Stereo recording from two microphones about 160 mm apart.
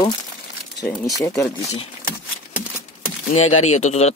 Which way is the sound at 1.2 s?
20° left (ahead or behind).